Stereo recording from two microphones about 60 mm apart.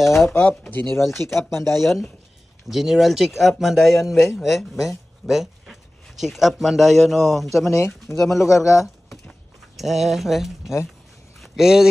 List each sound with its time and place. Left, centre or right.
0.1 s speech: left
0.5 s speech: left
1.8 s speech: centre
7.7 s speech: left
8.2 s speech: centre
8.5 s a man's voice: left
9.8 s speech: centre
11.3 s a sound: centre